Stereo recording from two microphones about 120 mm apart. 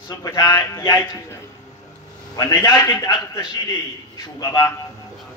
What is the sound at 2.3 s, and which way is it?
Speech, 30° left (ahead or behind).